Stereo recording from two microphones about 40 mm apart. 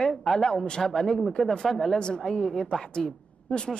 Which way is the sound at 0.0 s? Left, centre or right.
Centre.